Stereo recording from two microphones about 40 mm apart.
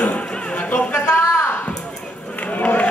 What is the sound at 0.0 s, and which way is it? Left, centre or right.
Music, left.